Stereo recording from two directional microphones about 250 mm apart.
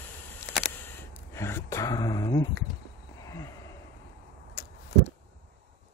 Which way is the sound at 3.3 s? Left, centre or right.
Centre.